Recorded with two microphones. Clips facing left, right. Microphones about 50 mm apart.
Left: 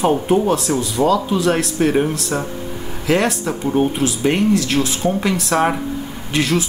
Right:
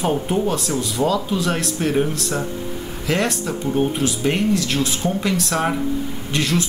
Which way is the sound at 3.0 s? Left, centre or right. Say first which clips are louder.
Left 4 dB; centre.